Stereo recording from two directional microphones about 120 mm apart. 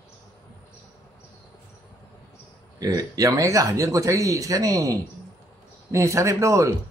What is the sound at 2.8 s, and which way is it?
Speech, 30° right (ahead or behind).